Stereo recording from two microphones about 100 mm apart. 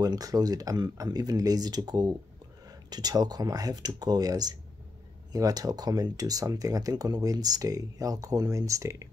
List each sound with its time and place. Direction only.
0.0 s speech: 40° right (ahead or behind)